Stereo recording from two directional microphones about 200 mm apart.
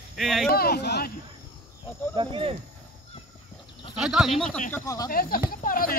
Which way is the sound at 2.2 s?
25° right (ahead or behind).